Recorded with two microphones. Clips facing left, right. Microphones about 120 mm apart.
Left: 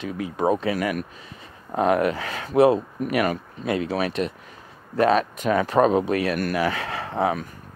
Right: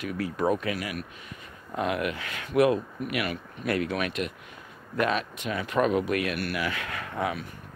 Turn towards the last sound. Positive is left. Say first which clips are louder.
# left 7 dB
turn(degrees=30)  # may be behind; listen again after turning